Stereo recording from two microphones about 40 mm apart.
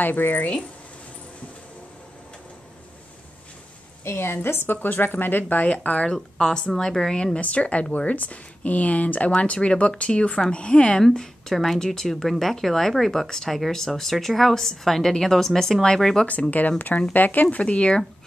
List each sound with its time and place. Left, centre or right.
0.0 s speech: left
4.0 s a woman's voice: left
4.8 s a woman's voice: left
5.6 s speech: left
6.0 s a woman's voice: centre
7.3 s a woman's voice: left
11.0 s a woman's voice: centre
16.3 s speech: left
17.6 s speech: left